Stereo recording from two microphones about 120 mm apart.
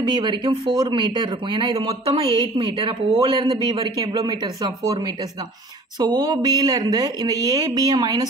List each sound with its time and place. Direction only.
0.0 s a woman's voice: 40° right (ahead or behind)